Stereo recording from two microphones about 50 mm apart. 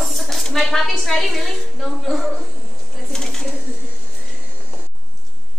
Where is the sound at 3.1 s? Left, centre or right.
Centre.